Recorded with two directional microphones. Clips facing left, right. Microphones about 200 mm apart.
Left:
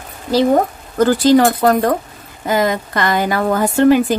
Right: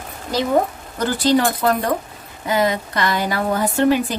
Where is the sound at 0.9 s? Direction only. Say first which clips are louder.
Left 6 dB; 45° left (ahead or behind).